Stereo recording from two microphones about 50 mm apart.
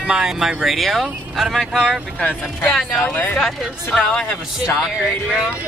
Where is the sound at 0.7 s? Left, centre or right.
Centre.